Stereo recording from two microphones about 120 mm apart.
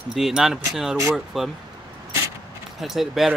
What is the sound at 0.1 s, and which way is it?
Speech, centre (ahead or behind).